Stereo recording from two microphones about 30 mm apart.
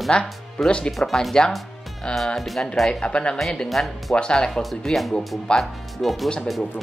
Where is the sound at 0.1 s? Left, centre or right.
Left.